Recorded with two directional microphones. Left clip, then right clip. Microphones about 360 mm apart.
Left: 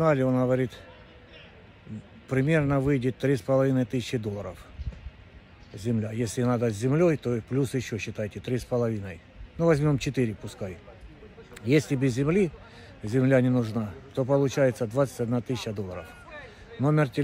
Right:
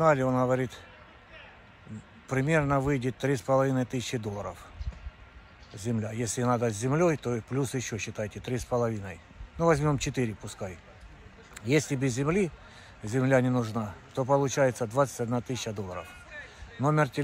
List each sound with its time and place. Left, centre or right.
0.0 s speech: centre
2.2 s speech: centre
5.8 s speech: centre
16.3 s a sound: left
16.8 s speech: centre